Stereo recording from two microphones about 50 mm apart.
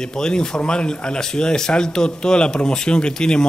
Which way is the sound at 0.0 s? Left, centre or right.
Centre.